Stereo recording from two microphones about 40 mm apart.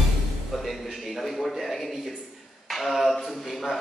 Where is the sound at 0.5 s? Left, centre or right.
Centre.